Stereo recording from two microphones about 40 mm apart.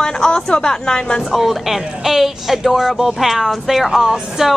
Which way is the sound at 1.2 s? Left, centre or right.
Centre.